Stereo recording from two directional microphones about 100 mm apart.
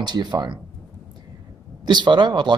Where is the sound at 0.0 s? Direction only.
45° right (ahead or behind).